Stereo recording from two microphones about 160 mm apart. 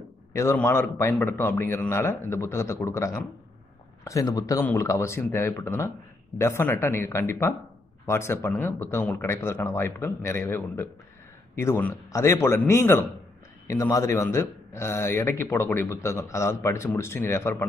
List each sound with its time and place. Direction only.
0.3 s speech: 15° left (ahead or behind)